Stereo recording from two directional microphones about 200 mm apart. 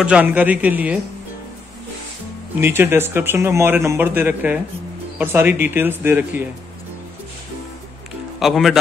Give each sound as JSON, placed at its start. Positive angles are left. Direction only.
{"t": 0.0, "sound": "a man's voice", "side_deg": -5}
{"t": 2.5, "sound": "a man's voice", "side_deg": -10}
{"t": 8.4, "sound": "speech", "side_deg": 0}